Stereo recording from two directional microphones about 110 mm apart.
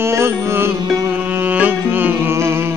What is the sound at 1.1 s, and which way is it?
Music, 15° right (ahead or behind).